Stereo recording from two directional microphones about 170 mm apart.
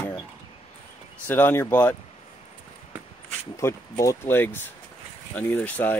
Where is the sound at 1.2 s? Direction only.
10° left (ahead or behind).